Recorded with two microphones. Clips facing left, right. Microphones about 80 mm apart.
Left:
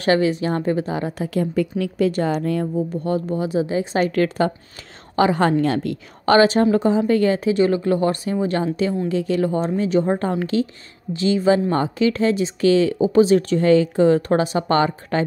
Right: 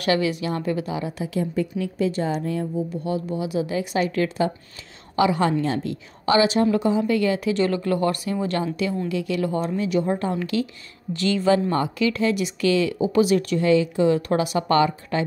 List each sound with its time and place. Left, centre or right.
0.0 s speech: left
1.5 s a woman's voice: left
3.0 s speech: left
4.0 s a woman's voice: left
5.1 s speech: left
7.5 s speech: left
11.1 s speech: left
11.7 s speech: left